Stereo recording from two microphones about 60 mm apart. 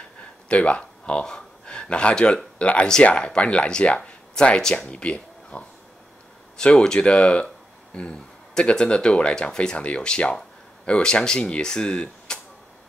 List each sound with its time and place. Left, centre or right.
0.5 s speech: centre